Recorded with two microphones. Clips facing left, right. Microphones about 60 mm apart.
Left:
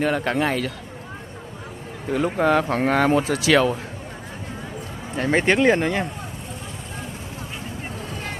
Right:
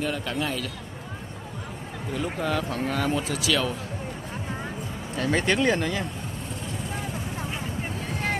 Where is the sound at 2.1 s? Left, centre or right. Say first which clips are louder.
Left 8 dB; left.